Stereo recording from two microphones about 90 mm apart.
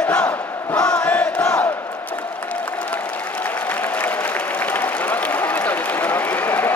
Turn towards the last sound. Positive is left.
turn(degrees=20)  # may be behind; listen again after turning